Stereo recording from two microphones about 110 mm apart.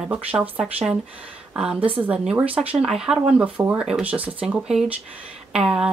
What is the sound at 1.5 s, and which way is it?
Speech, 10° right (ahead or behind).